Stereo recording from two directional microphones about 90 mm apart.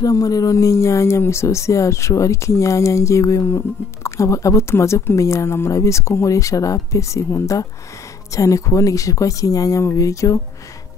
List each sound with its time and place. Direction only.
0.0 s speech: 40° left (ahead or behind)